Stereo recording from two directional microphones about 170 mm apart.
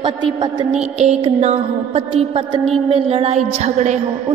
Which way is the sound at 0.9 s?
35° right (ahead or behind).